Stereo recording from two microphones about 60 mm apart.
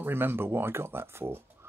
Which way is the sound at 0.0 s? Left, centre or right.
Right.